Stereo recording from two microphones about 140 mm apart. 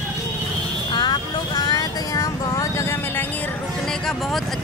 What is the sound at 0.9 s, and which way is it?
Vehicle, 30° left (ahead or behind).